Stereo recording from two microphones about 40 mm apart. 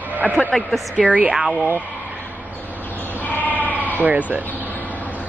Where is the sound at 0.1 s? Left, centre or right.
Right.